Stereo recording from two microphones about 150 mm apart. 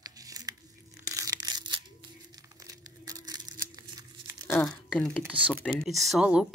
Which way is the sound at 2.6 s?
25° right (ahead or behind).